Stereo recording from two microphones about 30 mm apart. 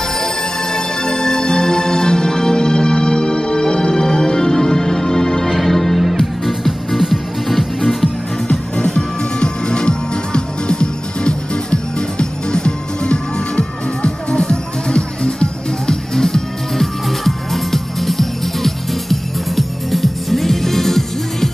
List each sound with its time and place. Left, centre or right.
0.7 s music: left; by 8.1 s centre
8.5 s music: left
15.9 s music: centre